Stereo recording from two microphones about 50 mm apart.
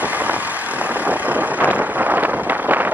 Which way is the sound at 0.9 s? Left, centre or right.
Right.